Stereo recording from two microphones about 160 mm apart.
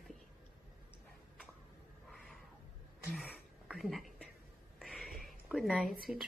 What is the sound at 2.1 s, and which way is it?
Cat, centre (ahead or behind).